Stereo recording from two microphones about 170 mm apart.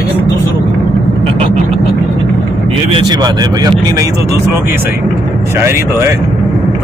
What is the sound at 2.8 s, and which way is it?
Speech, 30° right (ahead or behind).